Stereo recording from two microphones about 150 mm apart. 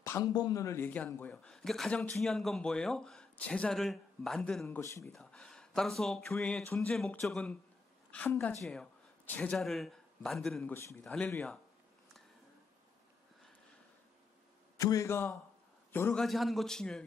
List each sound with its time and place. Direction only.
0.0 s speech: 20° left (ahead or behind); by 10.7 s 5° left (ahead or behind)
10.7 s speech: 20° left (ahead or behind)
14.8 s a man's voice: 20° left (ahead or behind); by 17.0 s 5° left (ahead or behind)